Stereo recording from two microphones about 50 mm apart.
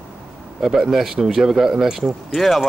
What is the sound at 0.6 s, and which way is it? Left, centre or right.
Speech, centre.